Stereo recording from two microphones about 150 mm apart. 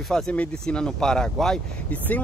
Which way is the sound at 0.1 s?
5° left (ahead or behind).